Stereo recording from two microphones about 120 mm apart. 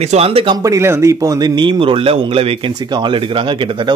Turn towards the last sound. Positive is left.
turn(degrees=-45)  # may be behind; listen again after turning